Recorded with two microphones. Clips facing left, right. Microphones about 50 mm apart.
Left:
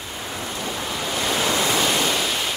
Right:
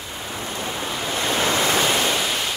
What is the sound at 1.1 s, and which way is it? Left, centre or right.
Waves, right.